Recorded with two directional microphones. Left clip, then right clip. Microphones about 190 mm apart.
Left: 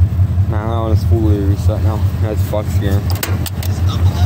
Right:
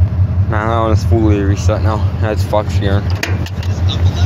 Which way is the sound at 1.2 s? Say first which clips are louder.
Right 4 dB; centre (ahead or behind).